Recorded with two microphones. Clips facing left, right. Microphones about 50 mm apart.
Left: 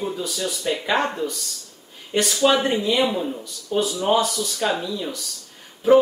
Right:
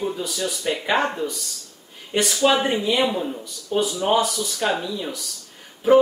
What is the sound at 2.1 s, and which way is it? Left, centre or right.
A man's voice, centre.